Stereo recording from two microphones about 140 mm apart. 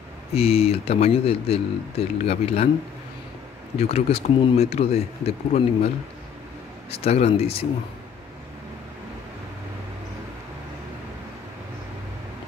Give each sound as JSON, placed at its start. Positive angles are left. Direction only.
{"t": 0.3, "sound": "speech", "side_deg": 45}
{"t": 3.7, "sound": "speech", "side_deg": 45}
{"t": 6.9, "sound": "speech", "side_deg": 45}